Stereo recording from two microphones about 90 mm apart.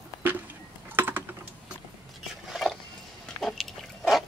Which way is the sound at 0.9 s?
25° right (ahead or behind).